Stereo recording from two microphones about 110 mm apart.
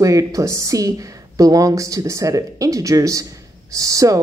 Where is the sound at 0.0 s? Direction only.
30° right (ahead or behind).